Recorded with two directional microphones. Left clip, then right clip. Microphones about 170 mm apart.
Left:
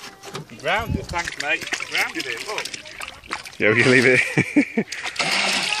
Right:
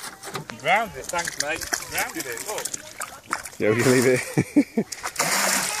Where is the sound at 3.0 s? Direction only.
Centre (ahead or behind).